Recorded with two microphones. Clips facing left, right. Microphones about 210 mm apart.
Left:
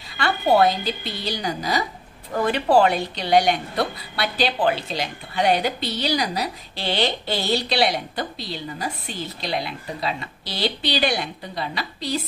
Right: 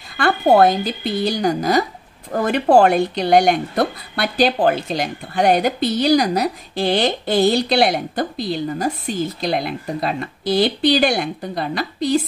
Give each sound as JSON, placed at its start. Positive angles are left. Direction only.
{"t": 0.2, "sound": "speech", "side_deg": -50}